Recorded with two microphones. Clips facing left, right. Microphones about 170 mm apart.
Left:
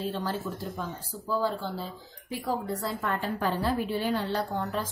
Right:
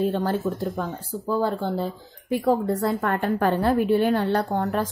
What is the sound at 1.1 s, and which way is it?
A woman's voice, 60° right (ahead or behind).